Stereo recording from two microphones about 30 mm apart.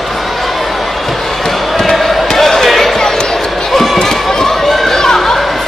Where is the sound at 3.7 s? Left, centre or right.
Centre.